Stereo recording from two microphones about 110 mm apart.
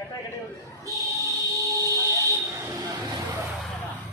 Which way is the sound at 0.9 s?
30° right (ahead or behind).